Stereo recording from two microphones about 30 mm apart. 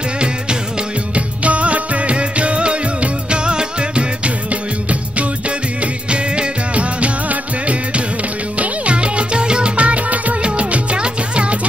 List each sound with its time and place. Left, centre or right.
1.1 s music: right
6.0 s music: right
10.4 s music: right